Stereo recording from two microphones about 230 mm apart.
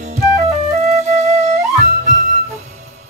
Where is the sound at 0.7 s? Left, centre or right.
Right.